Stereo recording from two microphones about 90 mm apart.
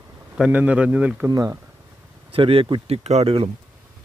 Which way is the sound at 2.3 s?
85° right.